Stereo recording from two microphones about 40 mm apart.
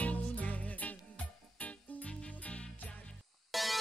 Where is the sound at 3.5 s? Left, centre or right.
Centre.